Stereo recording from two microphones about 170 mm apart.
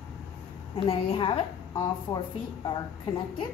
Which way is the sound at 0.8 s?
30° left (ahead or behind).